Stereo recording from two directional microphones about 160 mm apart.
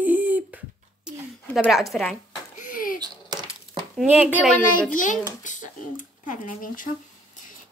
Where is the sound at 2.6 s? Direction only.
55° left (ahead or behind).